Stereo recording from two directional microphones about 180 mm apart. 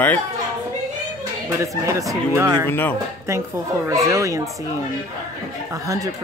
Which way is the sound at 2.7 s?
10° left (ahead or behind).